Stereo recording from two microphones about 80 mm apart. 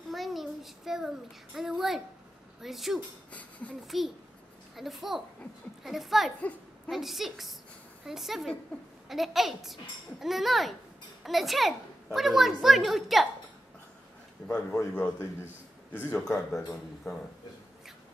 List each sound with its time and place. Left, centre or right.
0.1 s a child's voice: centre
3.3 s a sound: centre
3.8 s a child's voice: centre
14.5 s a man's voice: left